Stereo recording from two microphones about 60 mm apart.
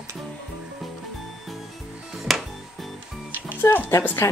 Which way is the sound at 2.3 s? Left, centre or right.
Centre.